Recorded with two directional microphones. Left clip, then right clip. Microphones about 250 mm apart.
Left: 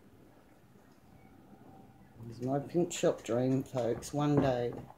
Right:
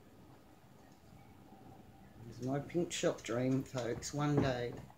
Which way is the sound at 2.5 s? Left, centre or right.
Centre.